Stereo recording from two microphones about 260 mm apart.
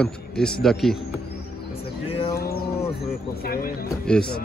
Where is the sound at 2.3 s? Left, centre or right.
Left.